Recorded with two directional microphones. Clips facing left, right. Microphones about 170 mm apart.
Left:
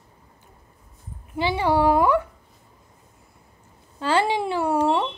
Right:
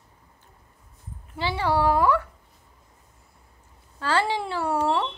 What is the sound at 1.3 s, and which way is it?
Speech, 15° left (ahead or behind).